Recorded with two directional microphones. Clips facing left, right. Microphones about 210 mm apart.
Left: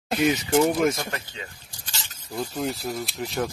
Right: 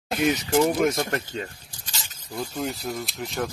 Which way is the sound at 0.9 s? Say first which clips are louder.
Right 6 dB; 50° right (ahead or behind).